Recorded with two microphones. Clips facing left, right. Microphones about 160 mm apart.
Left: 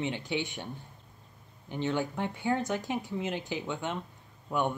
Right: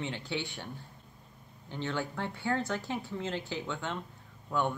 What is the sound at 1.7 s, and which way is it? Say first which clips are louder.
Speech: left 4 dB; 15° left (ahead or behind).